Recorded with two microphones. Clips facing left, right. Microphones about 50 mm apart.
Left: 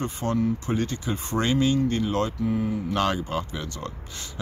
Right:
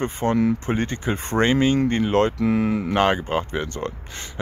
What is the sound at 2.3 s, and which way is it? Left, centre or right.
Speech, right.